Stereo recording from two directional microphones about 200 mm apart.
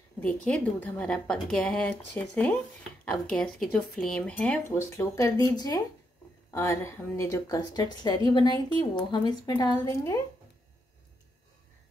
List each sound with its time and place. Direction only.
0.2 s a woman's voice: 5° left (ahead or behind)
6.5 s a woman's voice: 15° left (ahead or behind)